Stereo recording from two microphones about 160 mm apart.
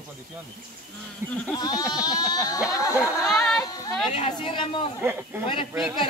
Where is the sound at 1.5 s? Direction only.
25° left (ahead or behind).